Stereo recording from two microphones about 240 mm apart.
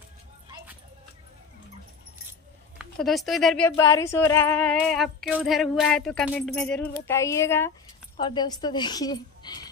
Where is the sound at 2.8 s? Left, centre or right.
Centre.